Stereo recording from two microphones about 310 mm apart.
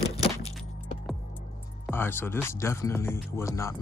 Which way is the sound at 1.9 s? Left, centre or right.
Centre.